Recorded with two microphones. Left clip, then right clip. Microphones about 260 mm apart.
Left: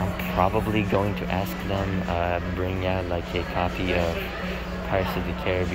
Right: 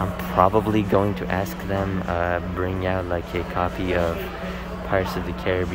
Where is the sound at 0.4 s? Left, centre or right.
Right.